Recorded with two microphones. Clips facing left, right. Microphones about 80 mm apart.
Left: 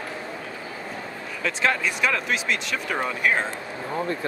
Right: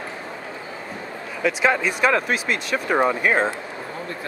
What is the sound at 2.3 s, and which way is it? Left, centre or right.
Speech, right.